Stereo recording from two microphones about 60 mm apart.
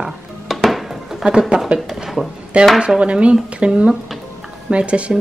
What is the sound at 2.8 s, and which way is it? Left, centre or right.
Speech, centre.